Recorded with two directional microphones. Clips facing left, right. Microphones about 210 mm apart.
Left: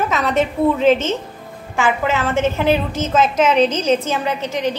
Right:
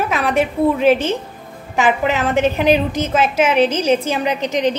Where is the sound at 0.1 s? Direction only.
10° right (ahead or behind).